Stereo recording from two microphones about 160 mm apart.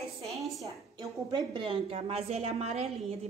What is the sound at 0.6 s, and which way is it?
A woman's voice, 25° right (ahead or behind).